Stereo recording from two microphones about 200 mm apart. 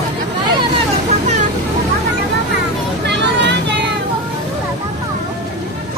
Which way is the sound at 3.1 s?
60° right (ahead or behind).